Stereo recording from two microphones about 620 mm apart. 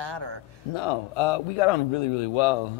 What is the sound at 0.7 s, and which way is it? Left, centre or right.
A man's voice, left.